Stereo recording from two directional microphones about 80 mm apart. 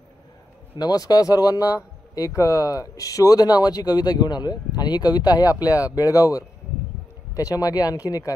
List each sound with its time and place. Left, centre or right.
0.7 s speech: left